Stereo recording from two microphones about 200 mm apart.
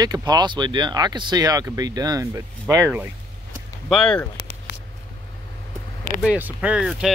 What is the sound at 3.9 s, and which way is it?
Speech, 5° left (ahead or behind).